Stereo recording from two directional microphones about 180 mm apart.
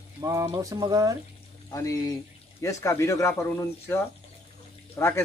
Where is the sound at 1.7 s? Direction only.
15° left (ahead or behind).